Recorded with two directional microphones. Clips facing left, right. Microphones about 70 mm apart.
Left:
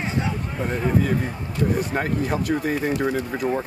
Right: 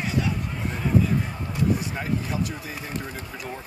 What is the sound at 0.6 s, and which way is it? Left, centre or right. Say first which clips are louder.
Speech: left 2 dB; left.